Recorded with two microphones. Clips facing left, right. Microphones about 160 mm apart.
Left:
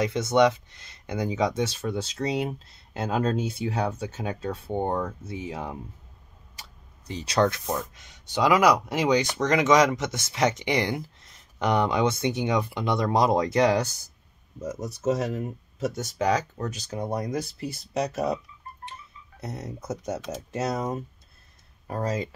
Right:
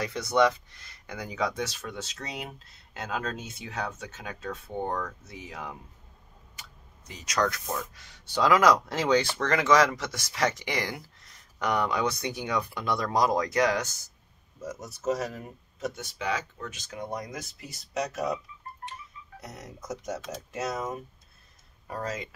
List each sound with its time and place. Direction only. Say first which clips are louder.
0.0 s speech: left 4 dB; 25° left (ahead or behind)
7.1 s speech: left 5 dB; 30° left (ahead or behind)
15.9 s speech: left 8 dB; 40° left (ahead or behind)
19.4 s speech: left 7 dB; 30° left (ahead or behind)